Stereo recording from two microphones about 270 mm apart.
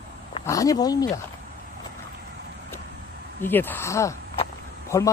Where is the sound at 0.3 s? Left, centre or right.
Centre.